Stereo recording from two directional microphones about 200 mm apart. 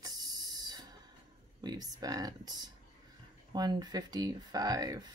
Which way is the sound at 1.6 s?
20° right (ahead or behind).